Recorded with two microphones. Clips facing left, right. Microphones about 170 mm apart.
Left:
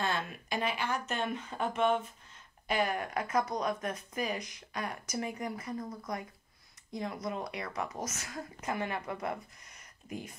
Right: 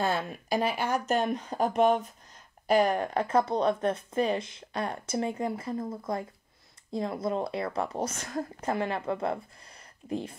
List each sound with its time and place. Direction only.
0.0 s speech: 40° right (ahead or behind)